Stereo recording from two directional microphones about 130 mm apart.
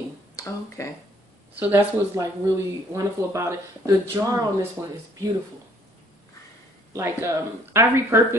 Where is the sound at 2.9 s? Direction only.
25° right (ahead or behind).